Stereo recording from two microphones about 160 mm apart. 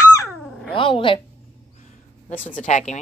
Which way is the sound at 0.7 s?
30° left (ahead or behind).